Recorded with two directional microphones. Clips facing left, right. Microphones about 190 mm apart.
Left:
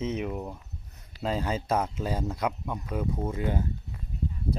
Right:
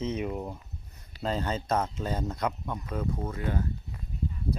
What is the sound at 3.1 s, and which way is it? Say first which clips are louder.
Speech: left 2 dB; 20° left (ahead or behind).